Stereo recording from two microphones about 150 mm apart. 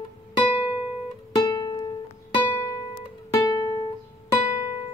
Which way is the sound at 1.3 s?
25° left (ahead or behind).